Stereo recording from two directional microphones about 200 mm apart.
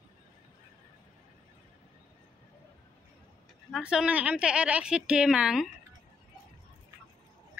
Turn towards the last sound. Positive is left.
turn(degrees=-5)  # may be behind; listen again after turning